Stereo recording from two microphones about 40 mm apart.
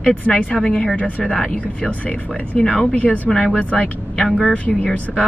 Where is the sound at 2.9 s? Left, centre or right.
Left.